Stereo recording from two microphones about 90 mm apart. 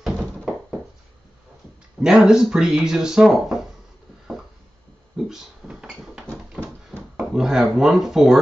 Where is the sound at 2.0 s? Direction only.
5° right (ahead or behind).